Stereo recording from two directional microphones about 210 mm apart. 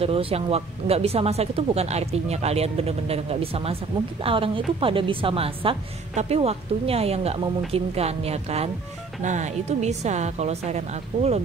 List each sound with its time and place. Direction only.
0.0 s a woman's voice: 25° right (ahead or behind)